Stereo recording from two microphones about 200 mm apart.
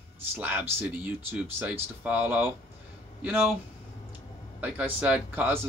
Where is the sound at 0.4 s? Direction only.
10° right (ahead or behind).